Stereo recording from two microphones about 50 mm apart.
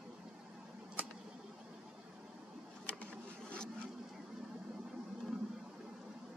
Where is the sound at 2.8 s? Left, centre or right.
Left.